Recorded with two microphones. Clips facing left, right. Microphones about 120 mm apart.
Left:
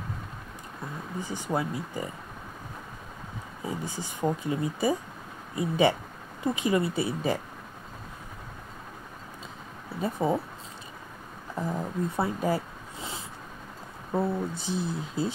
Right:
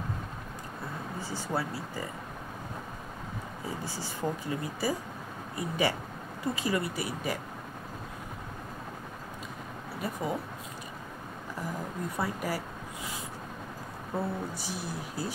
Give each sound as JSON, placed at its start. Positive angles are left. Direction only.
{"t": 1.2, "sound": "speech", "side_deg": 20}
{"t": 3.6, "sound": "speech", "side_deg": 20}
{"t": 10.0, "sound": "speech", "side_deg": 25}
{"t": 11.5, "sound": "speech", "side_deg": 25}